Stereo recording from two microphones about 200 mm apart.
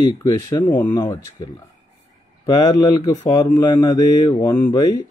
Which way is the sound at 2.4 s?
15° left (ahead or behind).